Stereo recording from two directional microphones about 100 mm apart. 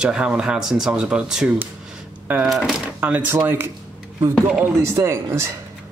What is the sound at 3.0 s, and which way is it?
Speech, 15° right (ahead or behind).